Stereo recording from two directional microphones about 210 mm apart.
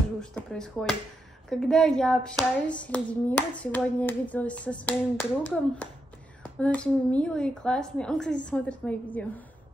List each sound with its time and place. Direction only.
0.2 s a woman's voice: 5° left (ahead or behind)
1.5 s hands: centre (ahead or behind)
6.4 s a woman's voice: 5° left (ahead or behind)